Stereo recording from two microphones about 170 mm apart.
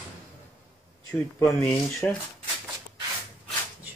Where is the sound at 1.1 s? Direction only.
15° left (ahead or behind).